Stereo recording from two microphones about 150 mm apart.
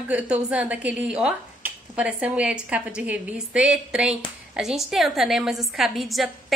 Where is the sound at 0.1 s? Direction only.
10° right (ahead or behind).